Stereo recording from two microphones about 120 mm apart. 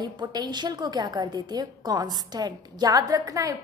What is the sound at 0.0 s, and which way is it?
A woman's voice, 35° right (ahead or behind).